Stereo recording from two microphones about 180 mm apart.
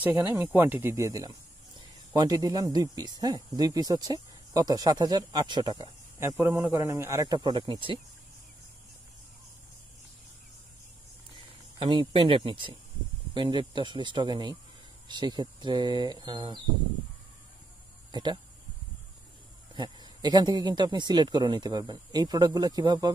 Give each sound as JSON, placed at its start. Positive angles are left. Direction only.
{"t": 0.0, "sound": "speech", "side_deg": -10}
{"t": 11.8, "sound": "speech", "side_deg": -25}
{"t": 18.1, "sound": "speech", "side_deg": -25}
{"t": 19.7, "sound": "speech", "side_deg": -25}